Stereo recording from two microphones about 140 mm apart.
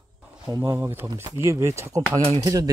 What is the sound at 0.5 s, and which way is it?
Speech, 20° right (ahead or behind).